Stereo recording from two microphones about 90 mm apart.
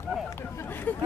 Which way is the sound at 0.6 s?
20° left (ahead or behind).